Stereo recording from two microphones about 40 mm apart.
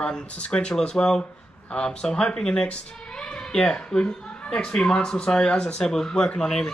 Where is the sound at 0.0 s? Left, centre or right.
Left.